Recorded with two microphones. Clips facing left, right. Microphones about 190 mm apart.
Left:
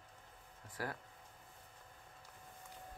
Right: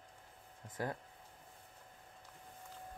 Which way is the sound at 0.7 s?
20° right (ahead or behind).